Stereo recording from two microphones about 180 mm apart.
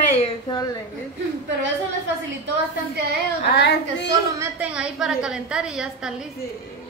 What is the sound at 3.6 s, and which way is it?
Speech, 70° left (ahead or behind).